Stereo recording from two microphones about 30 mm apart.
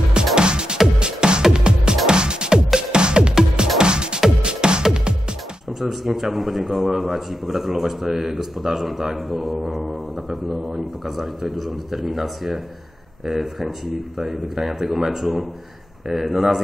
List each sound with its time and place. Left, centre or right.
0.4 s music: right
5.7 s speech: centre